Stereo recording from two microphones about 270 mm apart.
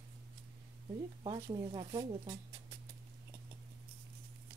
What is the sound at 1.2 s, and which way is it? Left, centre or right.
Speech, centre.